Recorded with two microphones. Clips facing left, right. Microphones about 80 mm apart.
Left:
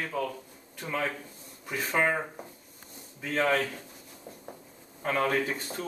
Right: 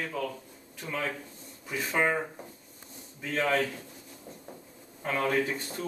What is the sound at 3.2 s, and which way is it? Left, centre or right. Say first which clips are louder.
Speech: left 1 dB; centre.